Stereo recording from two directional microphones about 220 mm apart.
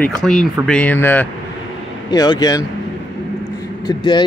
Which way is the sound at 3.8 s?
20° left (ahead or behind).